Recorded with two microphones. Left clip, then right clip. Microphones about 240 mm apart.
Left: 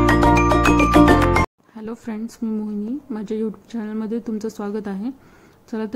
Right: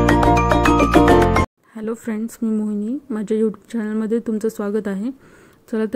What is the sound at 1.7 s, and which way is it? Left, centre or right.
Speech, centre.